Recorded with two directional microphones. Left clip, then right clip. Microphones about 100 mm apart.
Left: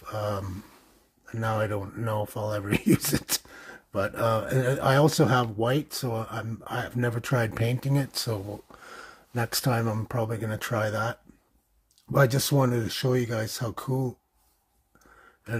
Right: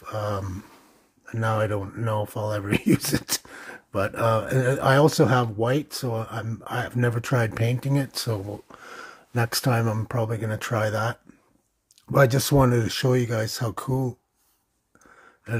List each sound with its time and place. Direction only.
0.0 s speech: 20° right (ahead or behind)
3.4 s speech: 35° right (ahead or behind)
13.2 s speech: 25° right (ahead or behind)